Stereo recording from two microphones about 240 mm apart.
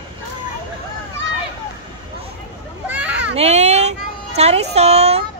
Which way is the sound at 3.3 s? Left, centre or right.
Right.